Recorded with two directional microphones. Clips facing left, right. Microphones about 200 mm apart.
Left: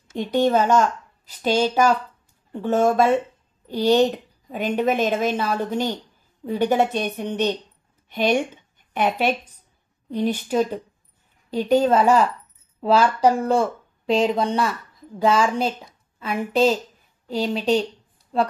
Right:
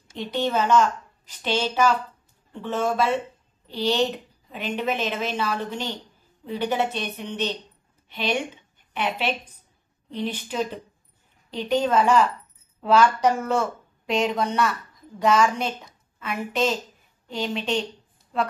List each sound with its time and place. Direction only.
0.1 s a woman's voice: 45° left (ahead or behind)